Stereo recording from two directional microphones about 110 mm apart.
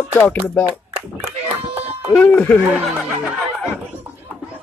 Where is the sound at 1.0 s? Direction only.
65° right (ahead or behind).